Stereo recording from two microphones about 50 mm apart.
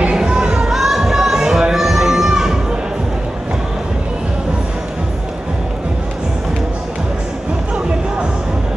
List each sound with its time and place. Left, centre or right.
0.1 s music: centre